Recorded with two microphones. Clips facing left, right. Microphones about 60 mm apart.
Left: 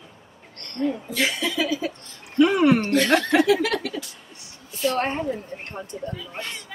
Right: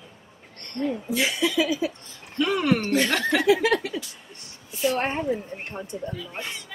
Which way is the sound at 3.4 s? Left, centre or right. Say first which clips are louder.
Right 1 dB; right.